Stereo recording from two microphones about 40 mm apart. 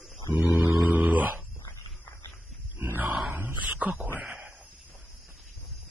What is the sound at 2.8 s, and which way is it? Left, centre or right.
Grunt, right.